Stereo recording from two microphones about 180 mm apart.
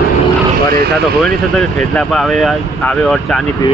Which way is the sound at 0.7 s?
60° right (ahead or behind).